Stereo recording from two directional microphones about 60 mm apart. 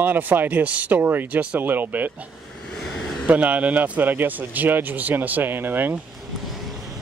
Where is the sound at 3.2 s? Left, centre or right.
Right.